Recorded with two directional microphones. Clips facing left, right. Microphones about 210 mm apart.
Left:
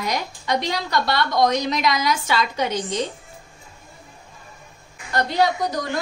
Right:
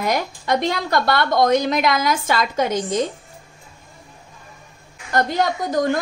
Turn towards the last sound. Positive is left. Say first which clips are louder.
# right 5 dB
turn(degrees=-50)  # may be behind; listen again after turning